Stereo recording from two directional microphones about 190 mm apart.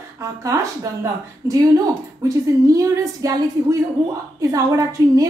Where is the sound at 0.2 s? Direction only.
15° right (ahead or behind).